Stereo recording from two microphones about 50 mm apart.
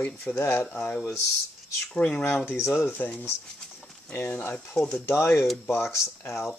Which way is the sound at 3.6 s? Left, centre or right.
Centre.